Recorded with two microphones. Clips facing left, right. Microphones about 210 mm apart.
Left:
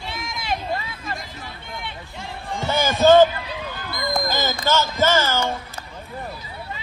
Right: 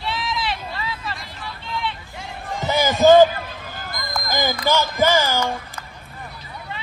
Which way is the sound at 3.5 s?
45° right (ahead or behind).